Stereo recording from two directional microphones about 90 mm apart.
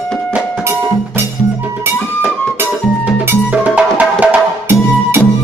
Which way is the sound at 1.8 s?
25° right (ahead or behind).